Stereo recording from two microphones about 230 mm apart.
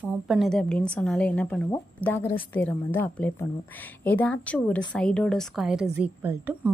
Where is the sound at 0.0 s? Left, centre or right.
Centre.